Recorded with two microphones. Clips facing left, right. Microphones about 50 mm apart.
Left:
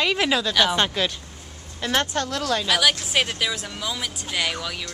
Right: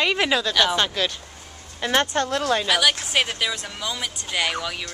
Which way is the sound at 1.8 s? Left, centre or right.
Centre.